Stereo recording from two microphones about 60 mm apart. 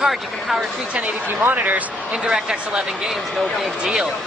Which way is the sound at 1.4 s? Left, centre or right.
Right.